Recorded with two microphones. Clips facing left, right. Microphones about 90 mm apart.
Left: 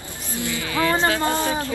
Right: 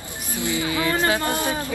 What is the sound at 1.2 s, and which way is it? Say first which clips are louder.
Speech: left 2 dB; 20° left (ahead or behind).